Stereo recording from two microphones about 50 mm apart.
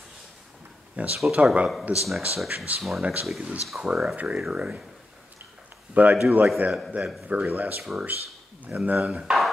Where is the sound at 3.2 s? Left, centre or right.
Centre.